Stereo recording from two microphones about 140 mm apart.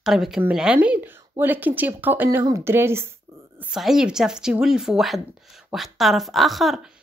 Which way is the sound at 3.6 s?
5° right (ahead or behind).